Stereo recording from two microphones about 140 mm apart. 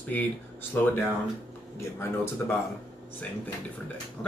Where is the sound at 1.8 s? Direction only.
15° left (ahead or behind).